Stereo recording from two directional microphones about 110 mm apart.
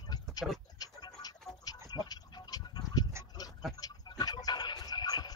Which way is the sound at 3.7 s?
35° left (ahead or behind).